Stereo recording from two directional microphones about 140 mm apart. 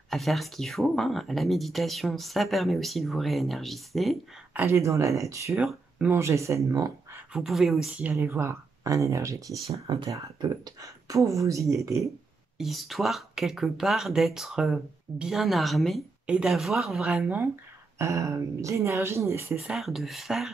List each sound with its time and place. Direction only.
0.1 s speech: centre (ahead or behind)
4.6 s speech: 20° right (ahead or behind)
5.6 s speech: 10° right (ahead or behind)
6.1 s speech: 20° right (ahead or behind)
7.3 s speech: centre (ahead or behind); by 9.4 s 20° right (ahead or behind)
9.8 s speech: 35° right (ahead or behind)
12.5 s speech: centre (ahead or behind)
17.9 s speech: 20° right (ahead or behind)
19.6 s speech: centre (ahead or behind)